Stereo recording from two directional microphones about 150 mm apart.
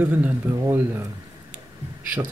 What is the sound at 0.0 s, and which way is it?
Speech, 10° right (ahead or behind).